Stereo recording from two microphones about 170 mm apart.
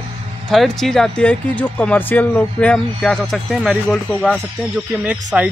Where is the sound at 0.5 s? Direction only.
Centre (ahead or behind).